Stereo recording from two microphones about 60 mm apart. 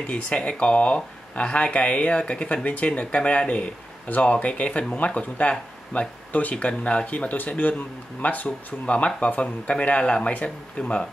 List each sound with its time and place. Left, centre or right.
0.0 s speech: centre